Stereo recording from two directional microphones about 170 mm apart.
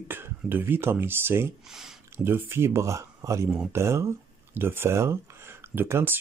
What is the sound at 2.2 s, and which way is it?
Speech, 15° right (ahead or behind).